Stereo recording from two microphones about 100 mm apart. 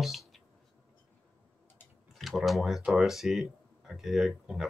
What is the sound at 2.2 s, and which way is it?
Speech, centre (ahead or behind).